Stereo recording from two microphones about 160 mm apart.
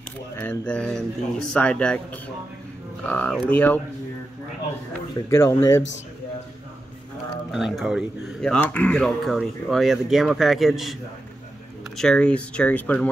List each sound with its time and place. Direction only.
0.4 s speech: 10° left (ahead or behind)
3.1 s speech: 5° left (ahead or behind)
5.3 s speech: 15° left (ahead or behind)
7.5 s speech: centre (ahead or behind)
12.0 s speech: 5° left (ahead or behind)